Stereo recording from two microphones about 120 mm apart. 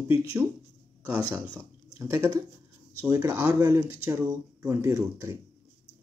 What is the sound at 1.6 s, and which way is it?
Speech, 20° right (ahead or behind).